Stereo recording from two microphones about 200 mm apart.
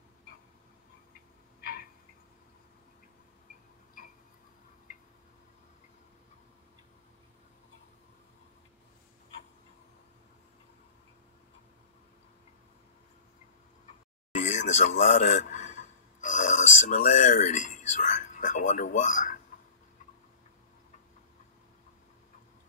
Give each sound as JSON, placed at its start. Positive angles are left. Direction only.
{"t": 14.4, "sound": "speech", "side_deg": 40}